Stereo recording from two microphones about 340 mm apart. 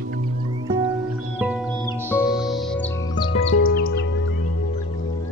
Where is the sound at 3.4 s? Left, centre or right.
Centre.